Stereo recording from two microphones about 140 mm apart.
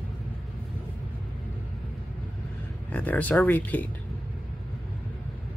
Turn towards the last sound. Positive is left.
turn(degrees=10)  # may be behind; listen again after turning